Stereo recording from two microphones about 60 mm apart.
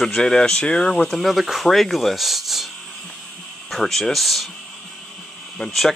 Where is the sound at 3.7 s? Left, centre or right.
Centre.